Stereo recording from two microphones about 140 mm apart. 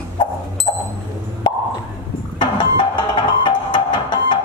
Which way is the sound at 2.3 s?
35° left (ahead or behind).